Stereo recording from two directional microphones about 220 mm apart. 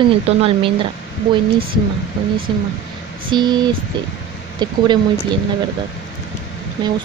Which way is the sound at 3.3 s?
20° right (ahead or behind).